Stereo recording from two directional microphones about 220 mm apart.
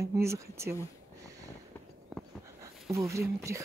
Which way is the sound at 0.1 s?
10° right (ahead or behind).